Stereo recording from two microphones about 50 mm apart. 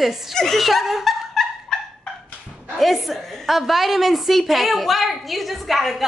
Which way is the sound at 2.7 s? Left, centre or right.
Centre.